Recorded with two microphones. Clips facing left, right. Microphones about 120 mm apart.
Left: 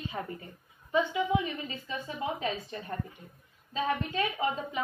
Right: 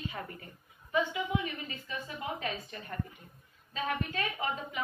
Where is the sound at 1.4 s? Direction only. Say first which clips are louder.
Left 3 dB; 25° left (ahead or behind).